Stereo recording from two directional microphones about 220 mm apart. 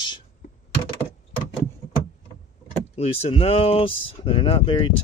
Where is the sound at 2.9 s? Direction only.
30° left (ahead or behind).